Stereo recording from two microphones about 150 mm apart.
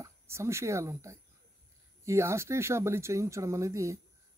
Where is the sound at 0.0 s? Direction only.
20° right (ahead or behind).